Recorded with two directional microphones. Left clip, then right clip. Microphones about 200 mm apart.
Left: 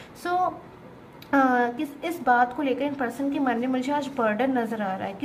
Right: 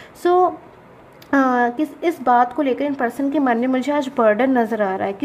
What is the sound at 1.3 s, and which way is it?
A woman's voice, 40° right (ahead or behind).